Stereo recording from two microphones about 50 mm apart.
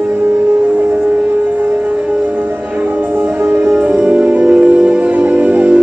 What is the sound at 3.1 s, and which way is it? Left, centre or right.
Music, right.